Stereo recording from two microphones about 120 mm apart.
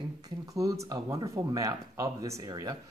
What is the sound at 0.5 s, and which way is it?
Speech, 30° right (ahead or behind).